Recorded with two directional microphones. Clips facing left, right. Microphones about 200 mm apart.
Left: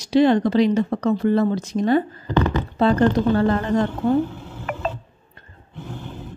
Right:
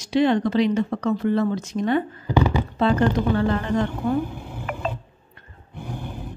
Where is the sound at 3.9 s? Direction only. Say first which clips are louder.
Left 4 dB; 15° right (ahead or behind).